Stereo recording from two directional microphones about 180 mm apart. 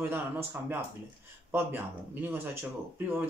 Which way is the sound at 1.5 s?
10° right (ahead or behind).